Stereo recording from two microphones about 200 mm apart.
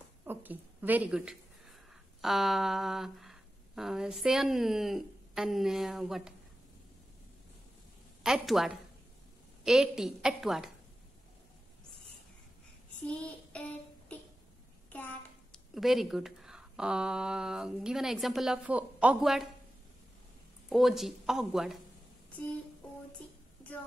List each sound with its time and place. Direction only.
0.2 s a sound: 10° right (ahead or behind)
2.2 s speech: centre (ahead or behind)
8.2 s speech: centre (ahead or behind)
13.0 s child singing: 5° left (ahead or behind)
15.5 s speech: centre (ahead or behind)
20.7 s speech: centre (ahead or behind)